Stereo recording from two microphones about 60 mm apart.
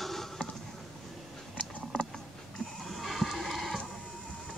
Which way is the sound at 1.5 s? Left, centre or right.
Centre.